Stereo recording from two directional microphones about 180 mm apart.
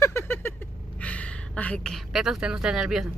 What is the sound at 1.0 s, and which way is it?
A woman's voice, 5° left (ahead or behind).